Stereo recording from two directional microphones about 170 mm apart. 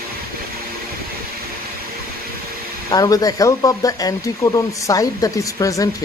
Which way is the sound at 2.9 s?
20° left (ahead or behind).